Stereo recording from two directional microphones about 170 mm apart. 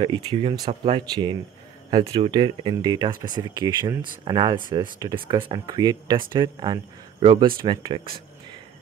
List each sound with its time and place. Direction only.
0.0 s speech: 30° right (ahead or behind)